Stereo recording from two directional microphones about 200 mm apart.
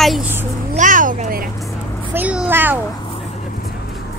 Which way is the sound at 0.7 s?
40° right (ahead or behind).